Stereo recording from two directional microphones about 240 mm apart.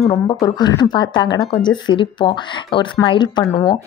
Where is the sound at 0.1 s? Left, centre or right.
Centre.